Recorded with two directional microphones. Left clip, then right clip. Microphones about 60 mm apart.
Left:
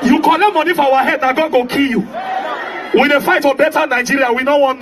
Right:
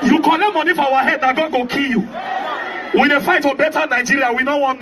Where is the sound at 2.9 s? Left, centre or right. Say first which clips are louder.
Left 2 dB; left.